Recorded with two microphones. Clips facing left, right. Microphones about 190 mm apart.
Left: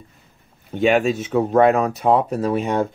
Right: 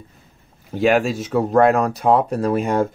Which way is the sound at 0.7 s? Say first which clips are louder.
Even; centre (ahead or behind).